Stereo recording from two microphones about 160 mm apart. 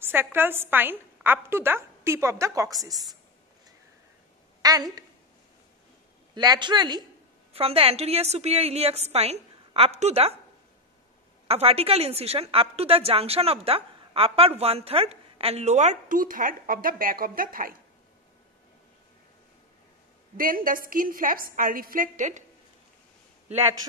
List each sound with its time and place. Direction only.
0.0 s a woman's voice: 15° right (ahead or behind)
4.6 s a woman's voice: 25° right (ahead or behind)
6.3 s speech: 25° right (ahead or behind)
7.5 s a woman's voice: 35° right (ahead or behind)
11.4 s a woman's voice: 40° right (ahead or behind); by 17.7 s 65° right (ahead or behind)
20.3 s a woman's voice: 60° right (ahead or behind)